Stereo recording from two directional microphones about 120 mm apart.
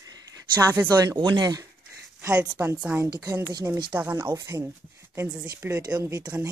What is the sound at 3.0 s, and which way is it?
Speech, 30° right (ahead or behind).